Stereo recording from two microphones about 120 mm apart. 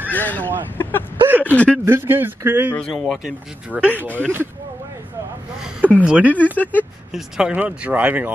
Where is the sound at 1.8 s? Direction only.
20° right (ahead or behind).